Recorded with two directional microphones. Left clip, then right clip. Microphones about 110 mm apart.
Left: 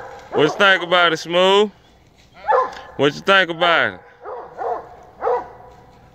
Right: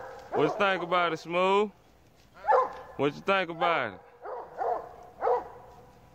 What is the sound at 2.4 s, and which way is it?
Bow-wow, 35° right (ahead or behind).